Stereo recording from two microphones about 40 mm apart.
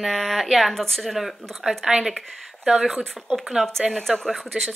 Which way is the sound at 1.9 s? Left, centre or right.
Centre.